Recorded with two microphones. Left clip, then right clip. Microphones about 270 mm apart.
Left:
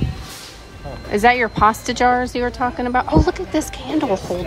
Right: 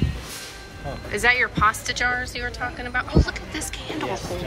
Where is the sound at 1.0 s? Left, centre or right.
Centre.